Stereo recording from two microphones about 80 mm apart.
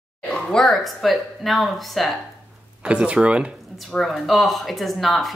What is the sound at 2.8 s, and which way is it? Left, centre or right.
Speech, centre.